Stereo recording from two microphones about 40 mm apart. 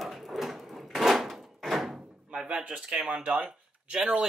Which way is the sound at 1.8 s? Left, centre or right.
Centre.